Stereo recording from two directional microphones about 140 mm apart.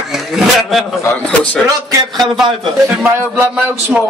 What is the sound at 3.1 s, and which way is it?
Speech, 15° right (ahead or behind).